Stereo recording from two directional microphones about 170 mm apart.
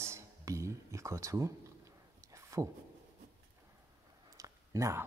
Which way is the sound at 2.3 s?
20° right (ahead or behind).